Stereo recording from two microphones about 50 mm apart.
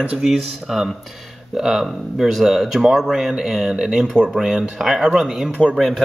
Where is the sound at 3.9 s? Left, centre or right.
Centre.